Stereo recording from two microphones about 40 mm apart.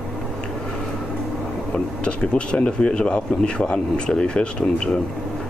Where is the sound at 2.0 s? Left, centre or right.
Left.